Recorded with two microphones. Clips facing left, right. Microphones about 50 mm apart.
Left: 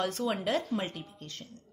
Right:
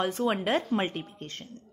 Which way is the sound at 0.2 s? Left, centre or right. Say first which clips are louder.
Right 4 dB; right.